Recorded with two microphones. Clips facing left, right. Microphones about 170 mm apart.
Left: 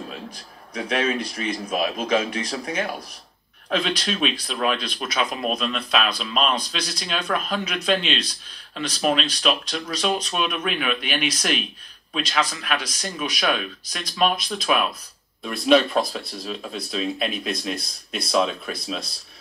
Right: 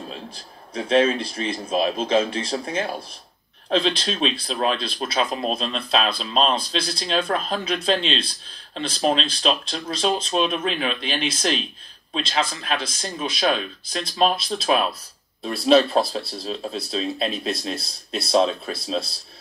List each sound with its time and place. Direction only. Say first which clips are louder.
0.1 s speech: even; 30° right (ahead or behind)